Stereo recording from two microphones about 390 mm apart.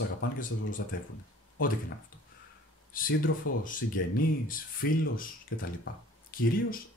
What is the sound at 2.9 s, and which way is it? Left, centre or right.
Speech, left.